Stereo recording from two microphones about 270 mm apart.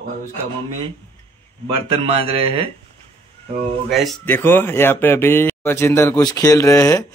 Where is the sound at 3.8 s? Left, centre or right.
Centre.